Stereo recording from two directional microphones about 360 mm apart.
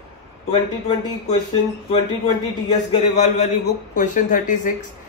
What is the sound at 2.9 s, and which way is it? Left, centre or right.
Speech, centre.